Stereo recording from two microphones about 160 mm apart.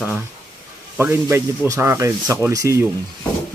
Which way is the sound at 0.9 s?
15° right (ahead or behind).